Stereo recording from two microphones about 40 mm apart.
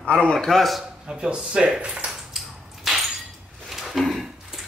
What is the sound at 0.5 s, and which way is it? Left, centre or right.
Speech, centre.